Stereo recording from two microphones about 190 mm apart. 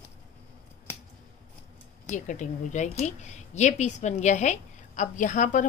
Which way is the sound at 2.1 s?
40° left (ahead or behind).